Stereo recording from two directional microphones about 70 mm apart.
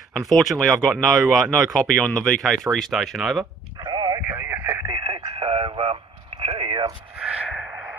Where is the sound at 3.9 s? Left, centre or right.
Right.